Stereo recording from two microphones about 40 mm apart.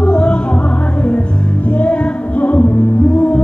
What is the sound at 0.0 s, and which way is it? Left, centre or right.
Music, left.